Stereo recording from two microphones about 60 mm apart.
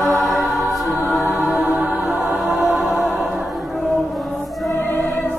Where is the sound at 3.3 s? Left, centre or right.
Centre.